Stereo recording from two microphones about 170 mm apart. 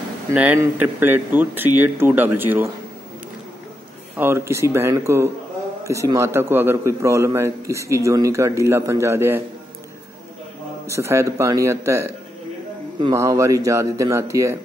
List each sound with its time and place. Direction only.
0.3 s a man's voice: 5° right (ahead or behind)
4.2 s a man's voice: 15° right (ahead or behind)
10.9 s a man's voice: 15° right (ahead or behind)